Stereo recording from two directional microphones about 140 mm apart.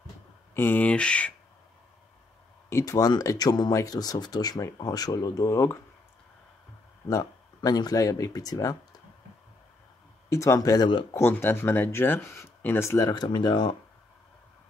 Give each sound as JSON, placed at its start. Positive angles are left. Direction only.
{"t": 0.6, "sound": "speech", "side_deg": 10}
{"t": 2.7, "sound": "speech", "side_deg": 25}
{"t": 7.1, "sound": "speech", "side_deg": 25}
{"t": 10.3, "sound": "speech", "side_deg": 20}
{"t": 11.1, "sound": "speech", "side_deg": 15}